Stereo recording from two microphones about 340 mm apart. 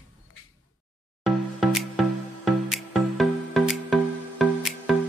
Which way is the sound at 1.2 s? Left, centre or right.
Centre.